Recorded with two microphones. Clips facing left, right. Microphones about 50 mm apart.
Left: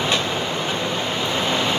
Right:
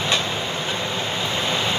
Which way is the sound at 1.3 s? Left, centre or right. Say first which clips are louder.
Left 2 dB; left.